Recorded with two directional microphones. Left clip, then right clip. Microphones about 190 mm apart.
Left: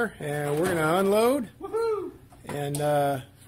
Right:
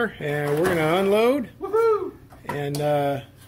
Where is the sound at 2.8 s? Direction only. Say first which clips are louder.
Right 2 dB; 30° left (ahead or behind).